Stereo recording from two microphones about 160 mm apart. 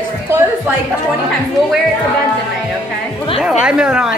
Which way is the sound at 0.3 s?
15° right (ahead or behind).